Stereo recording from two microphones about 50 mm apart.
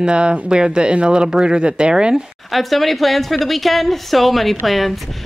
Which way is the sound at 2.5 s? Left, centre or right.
Centre.